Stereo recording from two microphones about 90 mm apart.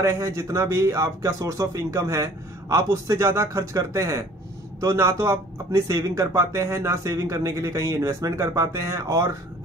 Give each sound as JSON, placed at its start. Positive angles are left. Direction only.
{"t": 0.0, "sound": "speech", "side_deg": -35}